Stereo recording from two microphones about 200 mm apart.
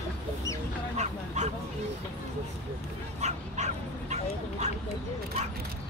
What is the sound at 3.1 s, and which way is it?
Speech, 35° right (ahead or behind).